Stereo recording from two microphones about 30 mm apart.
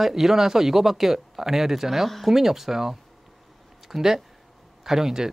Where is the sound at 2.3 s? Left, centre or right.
Centre.